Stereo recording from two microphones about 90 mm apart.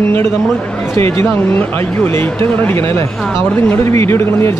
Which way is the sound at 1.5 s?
25° left (ahead or behind).